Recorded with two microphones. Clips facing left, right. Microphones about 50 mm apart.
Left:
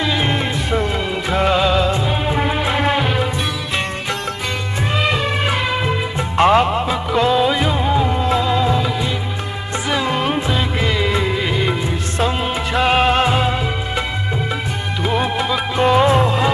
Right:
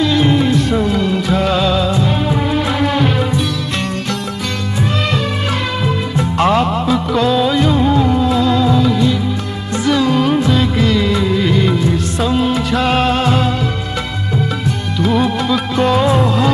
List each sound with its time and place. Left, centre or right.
0.0 s music: centre
5.9 s music: left
9.8 s music of bollywood: left
12.2 s music: left
15.0 s music: left